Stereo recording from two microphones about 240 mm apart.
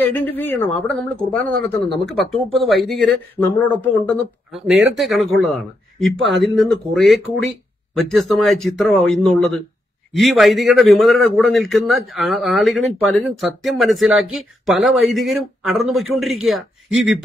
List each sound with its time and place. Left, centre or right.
0.0 s a man's voice: centre